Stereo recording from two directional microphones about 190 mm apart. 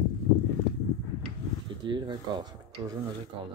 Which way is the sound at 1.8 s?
25° right (ahead or behind).